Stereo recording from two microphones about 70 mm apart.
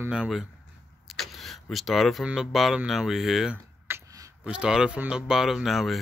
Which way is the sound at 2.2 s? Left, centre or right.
Centre.